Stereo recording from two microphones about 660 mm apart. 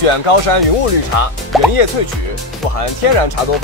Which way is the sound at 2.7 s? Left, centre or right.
Left.